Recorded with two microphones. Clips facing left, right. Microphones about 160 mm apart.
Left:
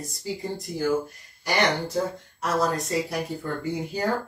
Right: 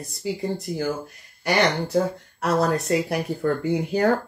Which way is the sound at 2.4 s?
65° right (ahead or behind).